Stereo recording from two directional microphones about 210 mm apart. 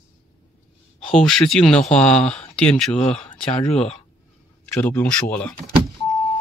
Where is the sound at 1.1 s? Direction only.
Centre (ahead or behind).